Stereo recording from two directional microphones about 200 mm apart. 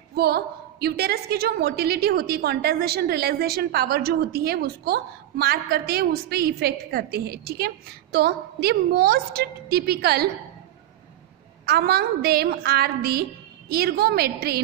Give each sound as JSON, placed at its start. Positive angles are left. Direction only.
{"t": 0.1, "sound": "a woman's voice", "side_deg": -50}
{"t": 11.6, "sound": "a woman's voice", "side_deg": -50}